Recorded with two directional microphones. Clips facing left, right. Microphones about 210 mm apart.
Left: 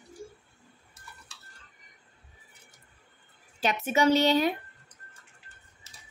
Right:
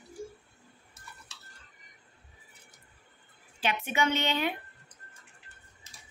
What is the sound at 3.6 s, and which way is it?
Speech, 40° left (ahead or behind).